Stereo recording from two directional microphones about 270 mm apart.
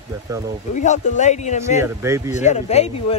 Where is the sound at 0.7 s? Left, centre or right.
Left.